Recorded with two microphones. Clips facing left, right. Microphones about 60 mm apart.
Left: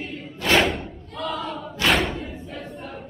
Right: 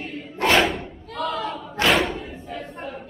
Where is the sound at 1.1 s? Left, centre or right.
Right.